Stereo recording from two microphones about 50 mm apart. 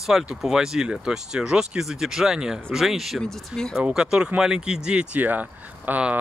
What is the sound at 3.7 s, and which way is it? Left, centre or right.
Speech, centre.